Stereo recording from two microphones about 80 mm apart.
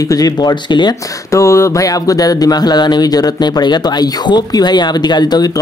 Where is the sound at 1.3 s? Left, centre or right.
Left.